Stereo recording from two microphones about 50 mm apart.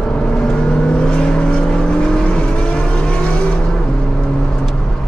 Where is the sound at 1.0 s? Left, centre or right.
Centre.